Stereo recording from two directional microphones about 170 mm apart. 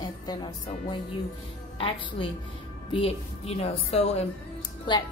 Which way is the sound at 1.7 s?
30° left (ahead or behind).